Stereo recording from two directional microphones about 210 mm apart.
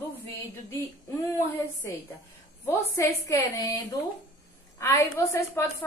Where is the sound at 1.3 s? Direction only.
10° left (ahead or behind).